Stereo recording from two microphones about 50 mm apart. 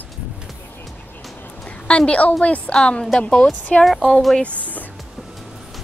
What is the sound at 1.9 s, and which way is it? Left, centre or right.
A woman's voice, left.